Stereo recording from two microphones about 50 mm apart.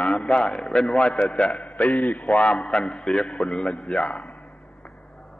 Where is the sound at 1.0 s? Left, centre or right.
Left.